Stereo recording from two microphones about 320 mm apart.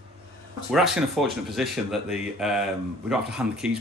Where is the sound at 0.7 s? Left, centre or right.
Centre.